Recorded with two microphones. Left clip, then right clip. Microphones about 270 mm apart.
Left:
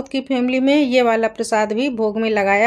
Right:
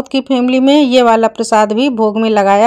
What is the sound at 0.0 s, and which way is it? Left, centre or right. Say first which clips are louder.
A woman's voice: right 7 dB; right.